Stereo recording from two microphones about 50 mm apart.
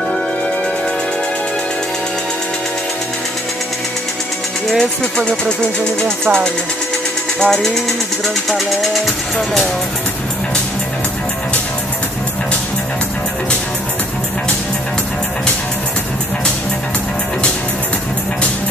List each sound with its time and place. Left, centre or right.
4.6 s speech: centre
5.2 s speech: left
6.0 s speech: right
7.3 s speech: centre
8.5 s speech: centre